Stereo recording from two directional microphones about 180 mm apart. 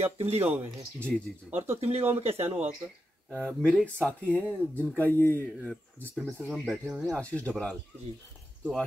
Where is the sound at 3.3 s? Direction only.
5° left (ahead or behind).